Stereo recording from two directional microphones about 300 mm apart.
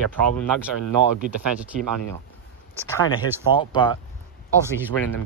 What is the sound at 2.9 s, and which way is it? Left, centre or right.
Speech, centre.